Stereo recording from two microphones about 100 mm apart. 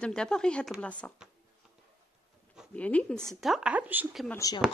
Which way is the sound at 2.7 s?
15° left (ahead or behind).